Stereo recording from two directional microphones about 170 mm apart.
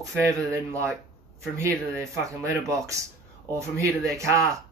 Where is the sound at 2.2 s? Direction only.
20° right (ahead or behind).